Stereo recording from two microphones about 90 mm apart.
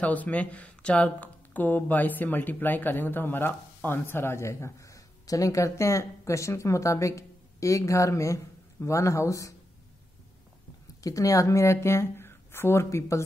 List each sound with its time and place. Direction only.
0.0 s speech: 15° left (ahead or behind); by 9.5 s 35° left (ahead or behind)
11.0 s speech: 40° left (ahead or behind)